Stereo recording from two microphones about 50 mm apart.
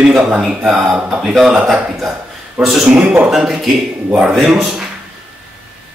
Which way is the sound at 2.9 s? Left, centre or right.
Right.